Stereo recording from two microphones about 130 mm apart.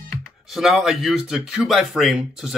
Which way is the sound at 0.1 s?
Centre (ahead or behind).